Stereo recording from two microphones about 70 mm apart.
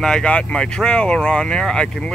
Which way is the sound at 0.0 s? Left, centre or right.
Centre.